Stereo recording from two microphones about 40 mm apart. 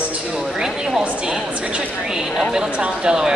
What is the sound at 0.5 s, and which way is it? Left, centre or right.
Speech, centre.